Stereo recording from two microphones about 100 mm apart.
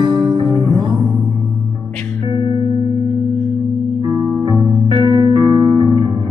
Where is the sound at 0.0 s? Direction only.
50° right (ahead or behind).